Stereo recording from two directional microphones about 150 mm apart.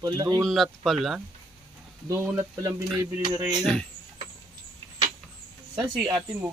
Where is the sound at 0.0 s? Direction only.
25° right (ahead or behind).